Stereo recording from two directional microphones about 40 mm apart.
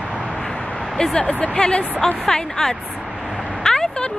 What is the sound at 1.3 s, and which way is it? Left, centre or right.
Music, left.